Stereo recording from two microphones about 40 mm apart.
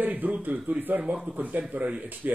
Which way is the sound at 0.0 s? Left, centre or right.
Right.